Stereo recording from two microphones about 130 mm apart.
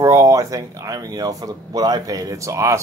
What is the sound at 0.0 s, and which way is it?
Speech, 25° right (ahead or behind).